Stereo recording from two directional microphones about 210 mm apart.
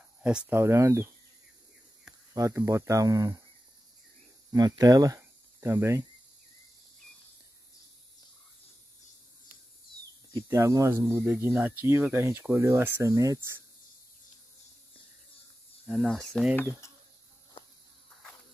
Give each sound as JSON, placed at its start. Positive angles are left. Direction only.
{"t": 0.2, "sound": "speech", "side_deg": -5}
{"t": 2.3, "sound": "speech", "side_deg": -15}
{"t": 4.5, "sound": "speech", "side_deg": -15}
{"t": 10.3, "sound": "speech", "side_deg": -15}
{"t": 15.9, "sound": "speech", "side_deg": 0}